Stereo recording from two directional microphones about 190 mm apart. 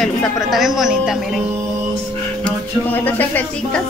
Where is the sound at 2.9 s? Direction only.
10° left (ahead or behind).